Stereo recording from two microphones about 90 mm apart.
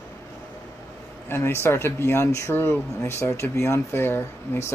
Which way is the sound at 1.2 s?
25° left (ahead or behind).